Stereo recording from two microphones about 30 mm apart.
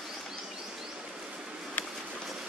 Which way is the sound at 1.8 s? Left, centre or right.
Left.